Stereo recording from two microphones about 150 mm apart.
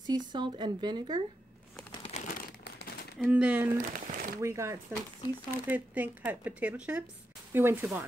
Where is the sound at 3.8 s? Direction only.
70° right (ahead or behind).